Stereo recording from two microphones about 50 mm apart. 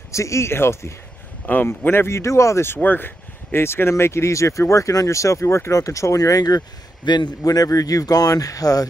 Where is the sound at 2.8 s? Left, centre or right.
Left.